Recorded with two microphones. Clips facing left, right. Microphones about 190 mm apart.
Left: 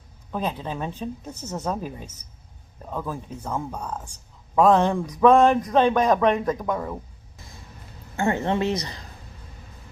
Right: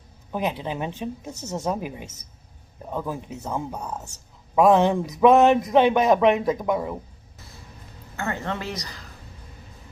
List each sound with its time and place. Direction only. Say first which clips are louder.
0.3 s speech: right 1 dB; 10° right (ahead or behind)
8.2 s a woman's voice: left 6 dB; 25° left (ahead or behind)